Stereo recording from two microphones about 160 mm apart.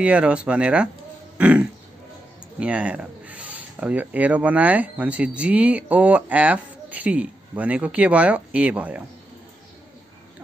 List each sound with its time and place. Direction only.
0.0 s speech: 5° right (ahead or behind)